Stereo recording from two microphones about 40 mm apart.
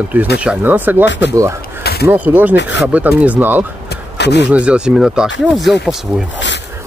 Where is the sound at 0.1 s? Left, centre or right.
Right.